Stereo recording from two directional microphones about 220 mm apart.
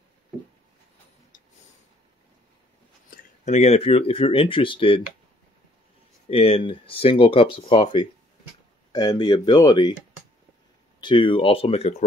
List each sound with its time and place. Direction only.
3.2 s speech: 30° left (ahead or behind)
6.2 s speech: 25° left (ahead or behind)
11.0 s speech: 20° left (ahead or behind)